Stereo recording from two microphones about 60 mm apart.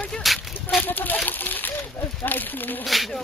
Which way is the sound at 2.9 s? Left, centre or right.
Centre.